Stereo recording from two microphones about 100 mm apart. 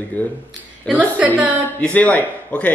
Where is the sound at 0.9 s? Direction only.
15° right (ahead or behind).